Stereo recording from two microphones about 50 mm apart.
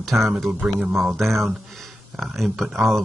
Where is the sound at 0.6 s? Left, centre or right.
Centre.